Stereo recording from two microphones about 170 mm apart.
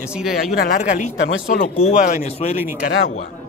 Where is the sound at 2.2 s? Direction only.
40° left (ahead or behind).